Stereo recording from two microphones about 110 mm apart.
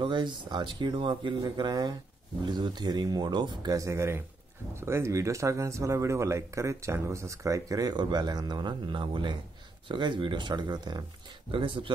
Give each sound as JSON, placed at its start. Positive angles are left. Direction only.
{"t": 0.0, "sound": "speech", "side_deg": -45}
{"t": 11.5, "sound": "speech", "side_deg": -50}